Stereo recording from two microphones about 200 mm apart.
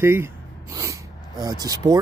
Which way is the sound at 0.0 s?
10° right (ahead or behind).